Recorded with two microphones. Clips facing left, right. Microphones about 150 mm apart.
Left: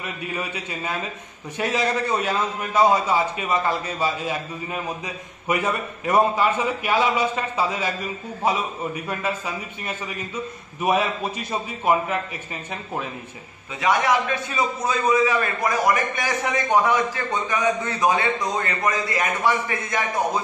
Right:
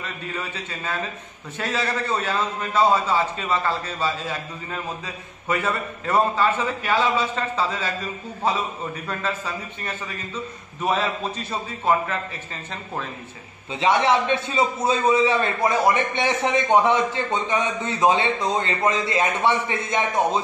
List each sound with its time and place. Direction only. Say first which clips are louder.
0.0 s a man's voice: left 2 dB; 15° left (ahead or behind)
13.7 s a man's voice: right 1 dB; 25° right (ahead or behind)